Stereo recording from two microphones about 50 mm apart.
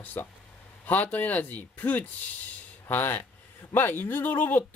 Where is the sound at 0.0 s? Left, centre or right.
Left.